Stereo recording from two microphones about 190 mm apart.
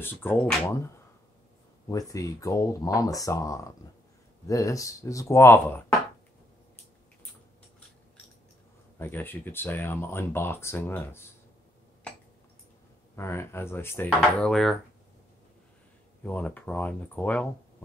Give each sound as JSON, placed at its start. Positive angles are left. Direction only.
{"t": 0.0, "sound": "speech", "side_deg": 10}
{"t": 1.9, "sound": "speech", "side_deg": 20}
{"t": 8.9, "sound": "speech", "side_deg": 10}
{"t": 13.1, "sound": "speech", "side_deg": 15}
{"t": 16.3, "sound": "speech", "side_deg": 10}